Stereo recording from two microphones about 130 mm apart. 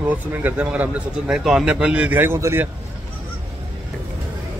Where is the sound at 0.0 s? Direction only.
15° right (ahead or behind).